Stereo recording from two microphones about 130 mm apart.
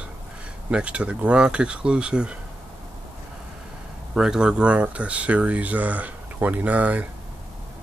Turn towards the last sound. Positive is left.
turn(degrees=-10)  # may be behind; listen again after turning